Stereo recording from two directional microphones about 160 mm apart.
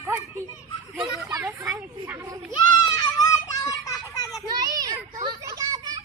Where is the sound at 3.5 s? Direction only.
25° left (ahead or behind).